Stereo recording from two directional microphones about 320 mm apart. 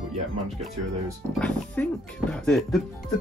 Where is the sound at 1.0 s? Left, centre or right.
Centre.